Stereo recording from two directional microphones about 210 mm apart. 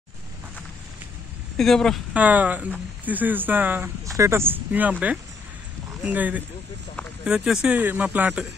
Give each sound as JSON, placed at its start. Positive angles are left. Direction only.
{"t": 1.6, "sound": "speech", "side_deg": 0}